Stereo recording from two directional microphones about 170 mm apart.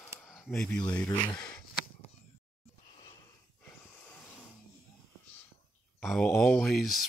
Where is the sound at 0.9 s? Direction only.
10° left (ahead or behind).